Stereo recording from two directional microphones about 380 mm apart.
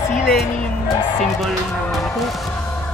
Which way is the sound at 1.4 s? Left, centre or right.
Centre.